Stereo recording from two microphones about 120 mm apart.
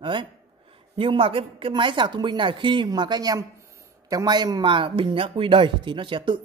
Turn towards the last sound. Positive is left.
turn(degrees=-40)  # may be behind; listen again after turning